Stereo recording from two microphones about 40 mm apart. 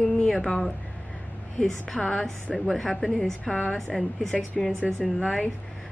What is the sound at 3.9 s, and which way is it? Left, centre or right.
Speech, centre.